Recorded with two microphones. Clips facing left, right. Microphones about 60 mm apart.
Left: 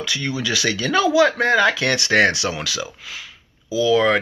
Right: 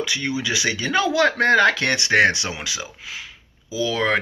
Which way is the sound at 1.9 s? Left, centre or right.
Right.